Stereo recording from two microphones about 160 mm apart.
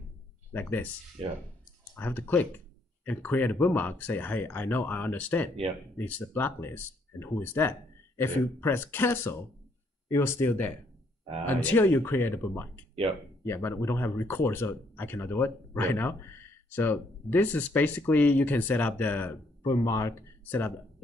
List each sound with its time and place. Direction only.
0.5 s speech: 10° left (ahead or behind)
2.0 s speech: 10° left (ahead or behind)
19.6 s speech: 25° left (ahead or behind)